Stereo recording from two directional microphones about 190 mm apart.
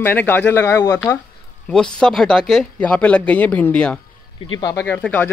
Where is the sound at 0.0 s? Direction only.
10° left (ahead or behind).